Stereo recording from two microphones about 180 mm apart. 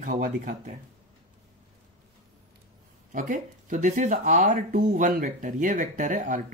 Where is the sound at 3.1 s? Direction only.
45° right (ahead or behind).